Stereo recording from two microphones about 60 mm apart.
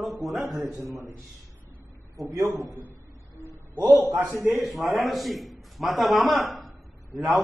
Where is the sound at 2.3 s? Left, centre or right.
Right.